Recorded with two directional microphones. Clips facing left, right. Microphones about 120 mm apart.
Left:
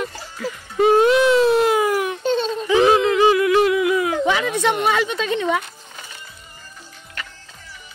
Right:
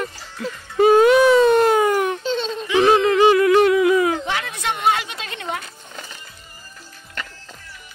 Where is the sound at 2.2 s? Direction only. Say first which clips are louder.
Left 3 dB; 55° left (ahead or behind).